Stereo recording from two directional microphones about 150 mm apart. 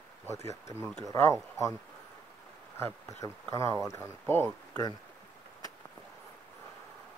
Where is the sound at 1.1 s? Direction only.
20° left (ahead or behind).